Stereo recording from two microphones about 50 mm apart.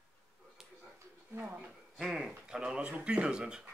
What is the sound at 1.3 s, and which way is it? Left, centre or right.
Speech, right.